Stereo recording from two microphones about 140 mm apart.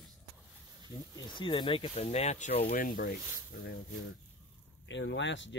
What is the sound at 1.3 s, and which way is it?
Speech, 35° left (ahead or behind).